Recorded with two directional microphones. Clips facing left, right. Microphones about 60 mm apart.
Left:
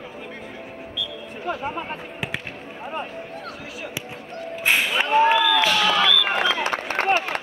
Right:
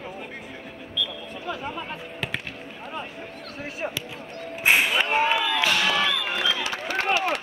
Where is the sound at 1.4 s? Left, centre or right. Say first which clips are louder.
Left 5 dB; left.